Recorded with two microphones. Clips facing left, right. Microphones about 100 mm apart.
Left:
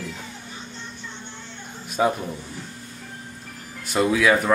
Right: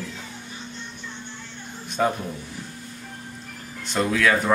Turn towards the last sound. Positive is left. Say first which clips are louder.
# left 2 dB
turn(degrees=10)  # may be behind; listen again after turning